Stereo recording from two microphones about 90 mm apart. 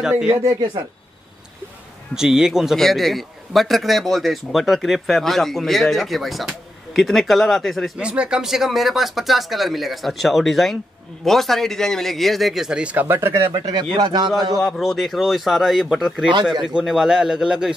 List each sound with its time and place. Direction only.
0.0 s a man's voice: 10° right (ahead or behind)
2.1 s a man's voice: 5° right (ahead or behind)
8.0 s a man's voice: 10° right (ahead or behind); by 13.5 s 30° right (ahead or behind)
13.7 s speech: 55° right (ahead or behind)
14.6 s a man's voice: 5° left (ahead or behind)